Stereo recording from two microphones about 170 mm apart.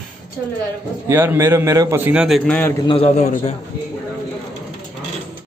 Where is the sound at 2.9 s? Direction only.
35° left (ahead or behind).